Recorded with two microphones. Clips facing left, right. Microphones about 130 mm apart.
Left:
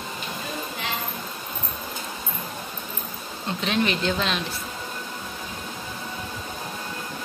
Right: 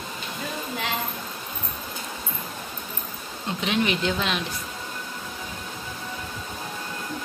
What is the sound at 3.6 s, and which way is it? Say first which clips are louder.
Speech: even; 10° right (ahead or behind).